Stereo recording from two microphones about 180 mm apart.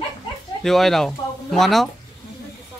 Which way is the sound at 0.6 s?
Centre (ahead or behind).